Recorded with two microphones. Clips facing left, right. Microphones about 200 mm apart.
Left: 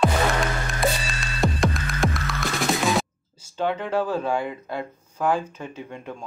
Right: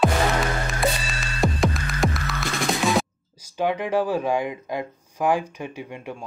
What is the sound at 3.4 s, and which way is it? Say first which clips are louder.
Speech: right 2 dB; 15° right (ahead or behind).